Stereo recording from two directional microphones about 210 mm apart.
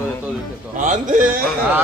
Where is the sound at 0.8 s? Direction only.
35° right (ahead or behind).